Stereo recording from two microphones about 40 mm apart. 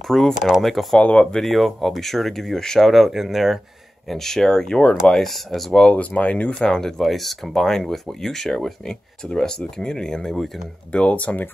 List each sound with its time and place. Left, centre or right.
0.1 s speech: centre
0.9 s speech: left
1.4 s speech: centre
2.6 s speech: centre
2.9 s speech: centre
4.1 s speech: centre
5.7 s speech: centre
5.9 s speech: left
6.6 s speech: centre
7.1 s speech: centre
9.2 s speech: centre
10.9 s speech: left
11.1 s speech: left